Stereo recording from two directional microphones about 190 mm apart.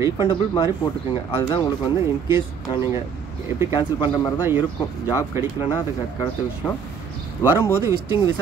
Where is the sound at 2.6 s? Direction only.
25° left (ahead or behind).